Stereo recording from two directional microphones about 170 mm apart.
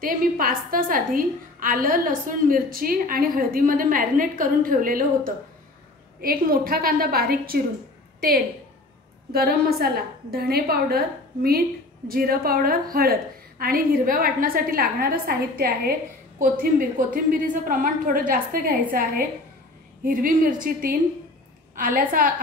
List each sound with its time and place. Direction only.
0.0 s a woman's voice: 55° right (ahead or behind)
9.3 s a woman's voice: 65° right (ahead or behind)